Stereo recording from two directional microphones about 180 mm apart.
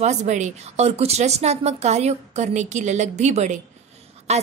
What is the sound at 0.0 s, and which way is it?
A woman's voice, 40° right (ahead or behind).